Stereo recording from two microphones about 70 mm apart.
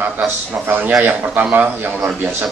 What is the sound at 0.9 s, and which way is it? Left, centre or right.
A man's voice, right.